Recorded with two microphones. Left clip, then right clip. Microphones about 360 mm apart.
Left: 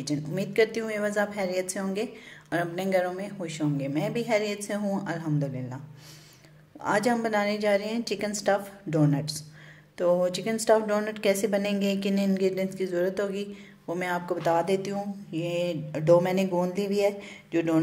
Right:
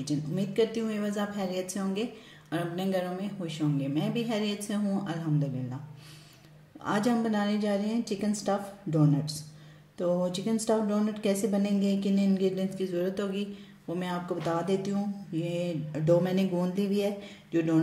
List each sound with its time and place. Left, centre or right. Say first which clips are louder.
0.0 s a woman's voice: left 2 dB; centre
6.8 s a woman's voice: left 4 dB; centre